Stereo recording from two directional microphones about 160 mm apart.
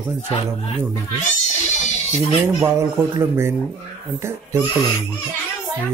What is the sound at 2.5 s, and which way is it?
Speech, 20° right (ahead or behind).